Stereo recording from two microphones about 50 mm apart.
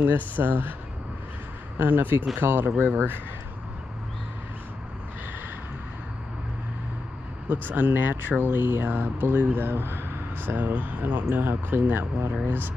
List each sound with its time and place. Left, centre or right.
0.0 s speech: right
1.8 s speech: right
7.4 s speech: right
10.7 s speech: right
11.3 s speech: right